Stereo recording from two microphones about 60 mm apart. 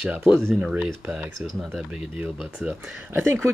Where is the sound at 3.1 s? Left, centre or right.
Right.